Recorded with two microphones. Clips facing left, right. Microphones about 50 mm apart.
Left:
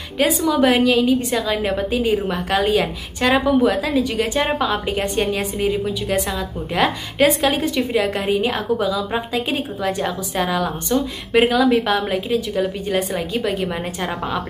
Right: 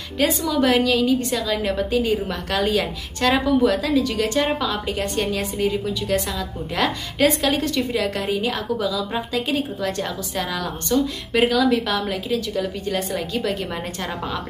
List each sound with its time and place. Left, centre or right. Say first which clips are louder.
0.2 s a woman's voice: left 3 dB; centre